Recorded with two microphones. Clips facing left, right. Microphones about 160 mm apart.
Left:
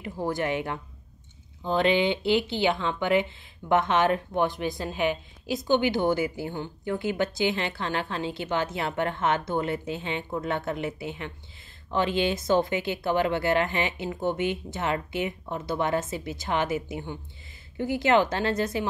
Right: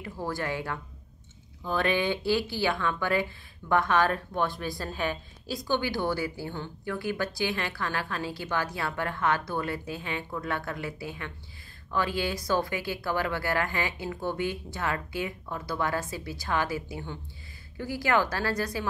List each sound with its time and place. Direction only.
0.0 s speech: 20° left (ahead or behind)